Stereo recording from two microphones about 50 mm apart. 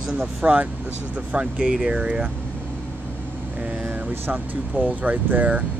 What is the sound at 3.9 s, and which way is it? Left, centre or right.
Vehicle, right.